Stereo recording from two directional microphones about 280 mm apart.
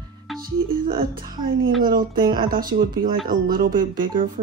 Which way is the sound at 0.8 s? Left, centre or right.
Right.